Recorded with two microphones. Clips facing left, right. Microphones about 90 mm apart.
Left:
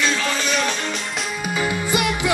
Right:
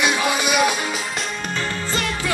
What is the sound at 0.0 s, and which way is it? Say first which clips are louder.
Music: right 2 dB; 15° right (ahead or behind).